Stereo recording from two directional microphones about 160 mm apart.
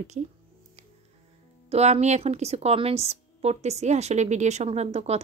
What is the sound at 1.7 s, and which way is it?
A woman's voice, 45° right (ahead or behind).